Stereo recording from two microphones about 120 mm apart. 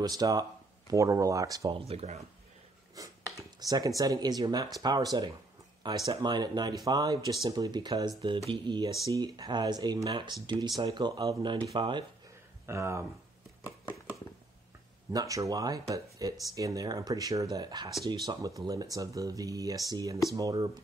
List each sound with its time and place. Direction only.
0.0 s speech: 35° right (ahead or behind)
1.7 s speech: 55° right (ahead or behind)
3.0 s speech: 30° right (ahead or behind)
12.6 s speech: 25° right (ahead or behind)
13.7 s a sound: 15° right (ahead or behind)
15.1 s speech: 30° right (ahead or behind)